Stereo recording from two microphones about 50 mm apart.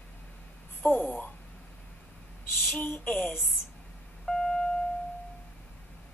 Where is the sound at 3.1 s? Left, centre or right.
Left.